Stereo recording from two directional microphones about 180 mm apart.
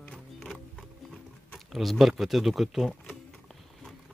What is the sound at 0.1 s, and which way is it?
Music, centre (ahead or behind).